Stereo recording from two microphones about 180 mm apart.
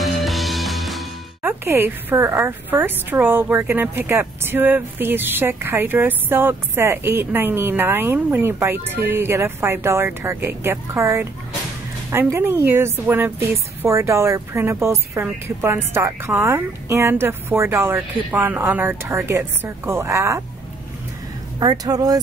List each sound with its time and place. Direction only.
0.0 s music: centre (ahead or behind)
1.4 s a woman's voice: 10° right (ahead or behind)
21.5 s speech: 20° right (ahead or behind)